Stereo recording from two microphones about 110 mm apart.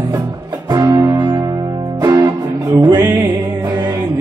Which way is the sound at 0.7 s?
35° right (ahead or behind).